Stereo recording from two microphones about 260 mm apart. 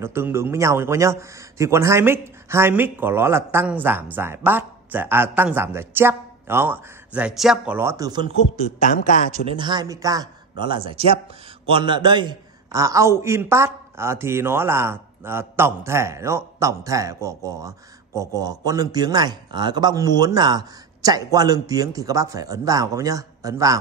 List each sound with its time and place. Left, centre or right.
0.0 s a man's voice: centre
8.9 s a man's voice: left
9.3 s a man's voice: centre